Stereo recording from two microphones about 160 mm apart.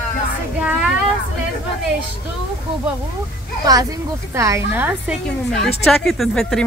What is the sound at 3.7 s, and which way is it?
A woman's voice, 20° right (ahead or behind).